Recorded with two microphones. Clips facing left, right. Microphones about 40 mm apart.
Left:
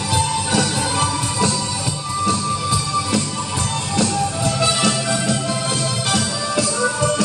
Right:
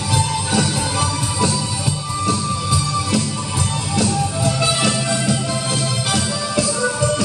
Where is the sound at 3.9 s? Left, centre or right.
Centre.